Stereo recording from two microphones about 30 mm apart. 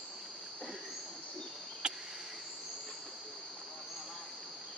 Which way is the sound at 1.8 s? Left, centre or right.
Right.